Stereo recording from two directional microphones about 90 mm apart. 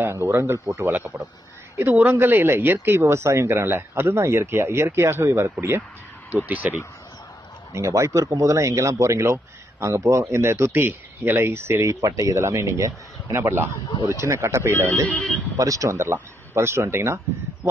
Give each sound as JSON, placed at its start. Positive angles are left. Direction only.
{"t": 0.0, "sound": "speech", "side_deg": -30}
{"t": 6.3, "sound": "speech", "side_deg": -20}
{"t": 7.7, "sound": "speech", "side_deg": -35}
{"t": 13.4, "sound": "speech", "side_deg": -20}
{"t": 14.0, "sound": "speech", "side_deg": -35}
{"t": 15.5, "sound": "speech", "side_deg": -40}